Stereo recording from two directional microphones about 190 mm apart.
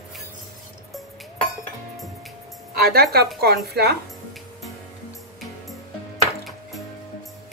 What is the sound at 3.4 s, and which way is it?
Speech, 60° right (ahead or behind).